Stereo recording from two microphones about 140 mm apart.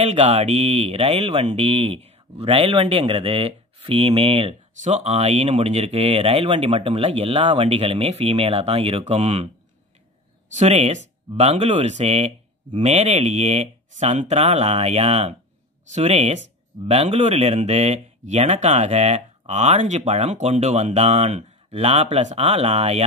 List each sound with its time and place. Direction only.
0.0 s speech: 50° right (ahead or behind)
10.5 s speech: 50° right (ahead or behind)